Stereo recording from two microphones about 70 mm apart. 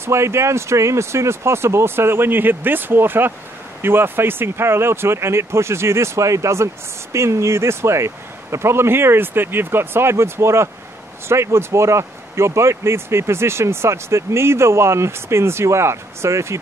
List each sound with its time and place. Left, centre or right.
0.0 s speech: right